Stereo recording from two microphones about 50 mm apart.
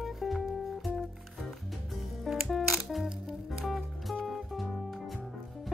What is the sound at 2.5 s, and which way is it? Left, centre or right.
Music, centre.